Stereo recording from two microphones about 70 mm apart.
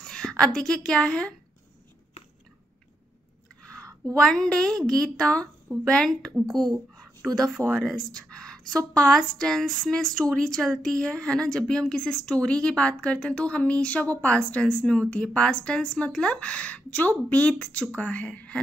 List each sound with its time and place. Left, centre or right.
0.0 s a woman's voice: centre
4.2 s a woman's voice: centre
7.3 s a woman's voice: centre